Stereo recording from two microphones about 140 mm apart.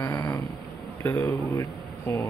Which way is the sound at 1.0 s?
15° left (ahead or behind).